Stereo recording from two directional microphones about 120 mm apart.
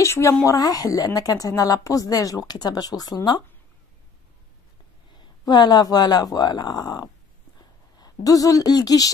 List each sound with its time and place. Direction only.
0.0 s a woman's voice: 25° left (ahead or behind)
5.4 s a woman's voice: 35° left (ahead or behind)